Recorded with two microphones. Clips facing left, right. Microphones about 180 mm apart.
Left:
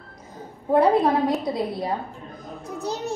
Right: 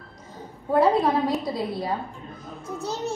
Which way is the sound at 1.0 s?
Centre (ahead or behind).